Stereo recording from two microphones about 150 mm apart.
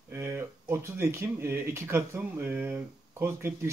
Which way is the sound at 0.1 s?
15° right (ahead or behind).